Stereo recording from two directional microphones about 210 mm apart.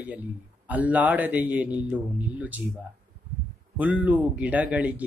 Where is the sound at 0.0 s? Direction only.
5° right (ahead or behind).